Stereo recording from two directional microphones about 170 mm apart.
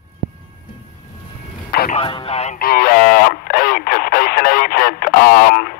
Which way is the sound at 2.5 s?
60° left (ahead or behind).